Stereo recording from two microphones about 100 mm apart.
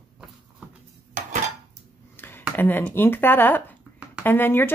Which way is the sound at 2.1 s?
20° left (ahead or behind).